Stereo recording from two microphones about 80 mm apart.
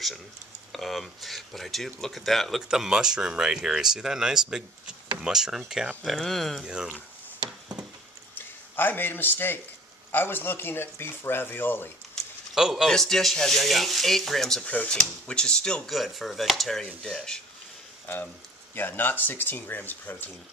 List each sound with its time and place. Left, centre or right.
0.7 s speech: centre
6.0 s speech: centre
6.6 s speech: centre
7.7 s a sound: centre
8.4 s speech: left
12.5 s speech: centre
12.9 s speech: centre
14.6 s speech: centre
15.9 s speech: centre
18.0 s speech: left